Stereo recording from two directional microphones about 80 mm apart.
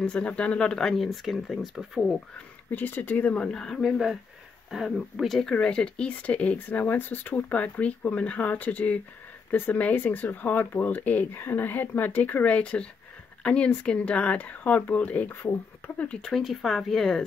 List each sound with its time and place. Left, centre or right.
0.0 s speech: centre
2.7 s speech: left; by 17.2 s centre